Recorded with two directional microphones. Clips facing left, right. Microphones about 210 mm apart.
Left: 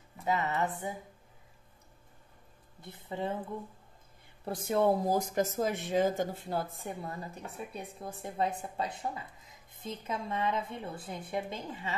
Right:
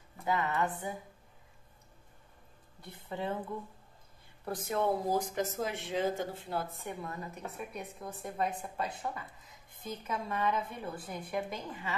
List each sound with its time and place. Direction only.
0.3 s a woman's voice: 25° left (ahead or behind)
3.1 s a woman's voice: 20° left (ahead or behind)
4.6 s a woman's voice: 35° left (ahead or behind)